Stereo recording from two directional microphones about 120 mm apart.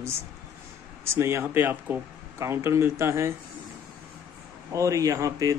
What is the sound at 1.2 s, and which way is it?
Speech, 20° right (ahead or behind).